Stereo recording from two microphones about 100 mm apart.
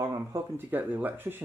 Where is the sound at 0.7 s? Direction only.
20° right (ahead or behind).